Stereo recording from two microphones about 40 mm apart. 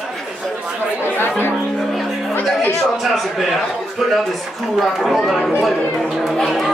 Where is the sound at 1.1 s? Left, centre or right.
Left.